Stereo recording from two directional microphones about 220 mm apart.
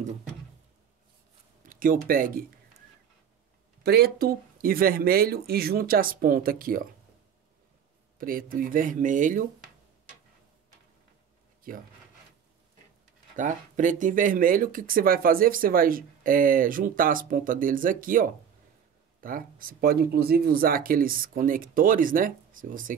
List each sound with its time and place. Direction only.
1.6 s speech: 40° right (ahead or behind)
3.8 s speech: 45° right (ahead or behind)
8.2 s speech: 40° right (ahead or behind)
13.4 s speech: 35° right (ahead or behind)